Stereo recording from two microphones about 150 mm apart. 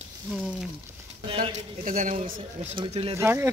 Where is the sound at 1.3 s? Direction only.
35° right (ahead or behind).